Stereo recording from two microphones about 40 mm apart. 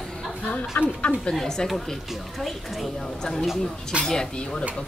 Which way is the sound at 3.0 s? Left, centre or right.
Centre.